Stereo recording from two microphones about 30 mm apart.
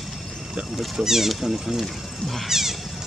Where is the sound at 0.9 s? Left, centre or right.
Centre.